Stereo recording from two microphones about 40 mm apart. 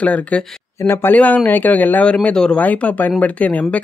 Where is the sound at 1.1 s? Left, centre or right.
Left.